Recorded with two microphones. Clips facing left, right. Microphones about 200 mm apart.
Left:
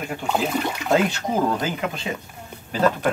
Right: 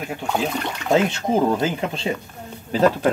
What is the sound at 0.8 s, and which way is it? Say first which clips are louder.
Speech: right 3 dB; 25° right (ahead or behind).